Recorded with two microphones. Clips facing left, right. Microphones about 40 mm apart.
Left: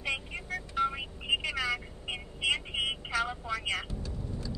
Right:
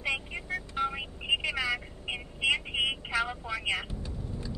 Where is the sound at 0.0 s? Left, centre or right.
Centre.